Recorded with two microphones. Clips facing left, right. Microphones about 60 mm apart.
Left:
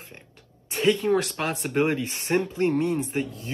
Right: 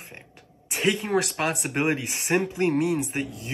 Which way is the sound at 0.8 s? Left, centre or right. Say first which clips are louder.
Left 2 dB; centre.